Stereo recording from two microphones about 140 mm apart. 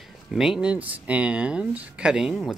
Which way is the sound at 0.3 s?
5° right (ahead or behind).